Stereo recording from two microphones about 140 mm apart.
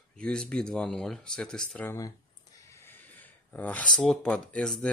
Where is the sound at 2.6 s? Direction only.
15° left (ahead or behind).